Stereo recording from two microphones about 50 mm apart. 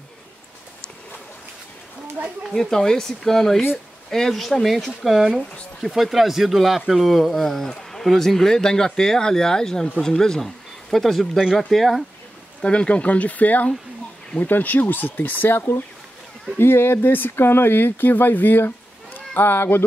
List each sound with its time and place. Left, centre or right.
2.2 s speech: right
2.5 s speech: centre
12.6 s speech: left